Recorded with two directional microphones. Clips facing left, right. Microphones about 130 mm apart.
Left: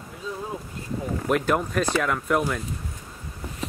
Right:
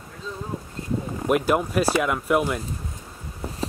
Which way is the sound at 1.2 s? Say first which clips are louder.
Right 2 dB; 10° right (ahead or behind).